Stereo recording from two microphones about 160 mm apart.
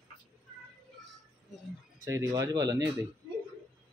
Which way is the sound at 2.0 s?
20° right (ahead or behind).